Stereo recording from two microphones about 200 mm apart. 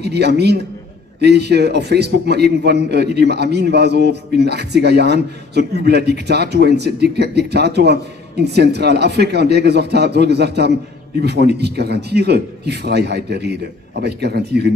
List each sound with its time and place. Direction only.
0.0 s a man's voice: 55° right (ahead or behind)